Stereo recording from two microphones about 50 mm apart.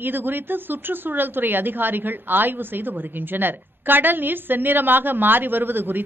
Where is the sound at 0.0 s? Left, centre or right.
Right.